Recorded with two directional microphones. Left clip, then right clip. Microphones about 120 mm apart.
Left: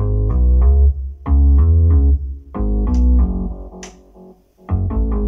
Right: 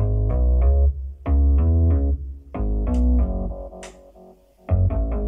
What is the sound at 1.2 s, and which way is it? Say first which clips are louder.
Music: left 3 dB; 20° right (ahead or behind).